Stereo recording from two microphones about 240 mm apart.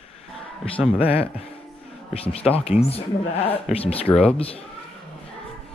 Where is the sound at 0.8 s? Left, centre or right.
Centre.